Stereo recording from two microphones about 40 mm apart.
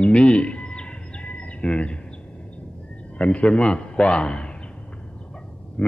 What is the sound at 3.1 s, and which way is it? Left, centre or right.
A man's voice, left.